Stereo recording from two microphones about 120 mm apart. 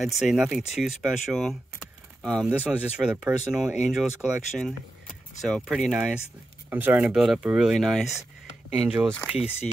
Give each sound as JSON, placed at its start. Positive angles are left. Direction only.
{"t": 0.0, "sound": "speech", "side_deg": -5}
{"t": 2.4, "sound": "speech", "side_deg": -10}
{"t": 9.2, "sound": "speech", "side_deg": -10}